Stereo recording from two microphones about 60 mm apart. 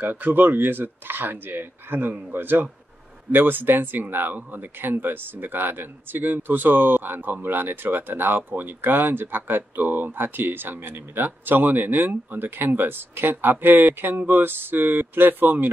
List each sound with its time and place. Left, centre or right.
0.0 s speech: right